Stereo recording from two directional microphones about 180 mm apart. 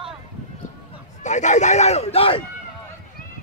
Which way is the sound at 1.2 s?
40° left (ahead or behind).